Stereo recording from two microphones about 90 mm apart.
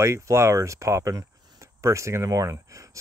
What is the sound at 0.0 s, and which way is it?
Speech, 30° right (ahead or behind).